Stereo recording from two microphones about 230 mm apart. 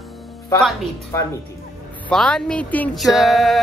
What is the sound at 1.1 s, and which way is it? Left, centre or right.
Speech, centre.